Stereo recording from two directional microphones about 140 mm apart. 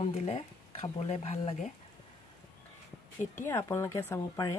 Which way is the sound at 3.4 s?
20° left (ahead or behind).